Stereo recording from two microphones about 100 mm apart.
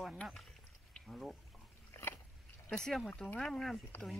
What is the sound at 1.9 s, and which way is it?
Biting, 25° left (ahead or behind).